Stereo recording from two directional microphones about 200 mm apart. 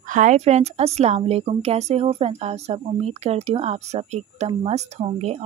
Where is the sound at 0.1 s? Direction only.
40° right (ahead or behind).